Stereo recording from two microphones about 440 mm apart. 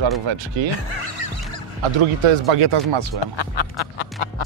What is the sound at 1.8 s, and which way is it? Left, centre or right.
Speech, right.